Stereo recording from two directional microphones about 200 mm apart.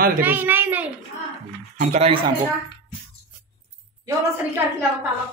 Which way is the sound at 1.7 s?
35° right (ahead or behind).